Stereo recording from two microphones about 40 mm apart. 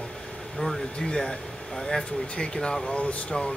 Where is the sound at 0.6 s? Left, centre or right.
Centre.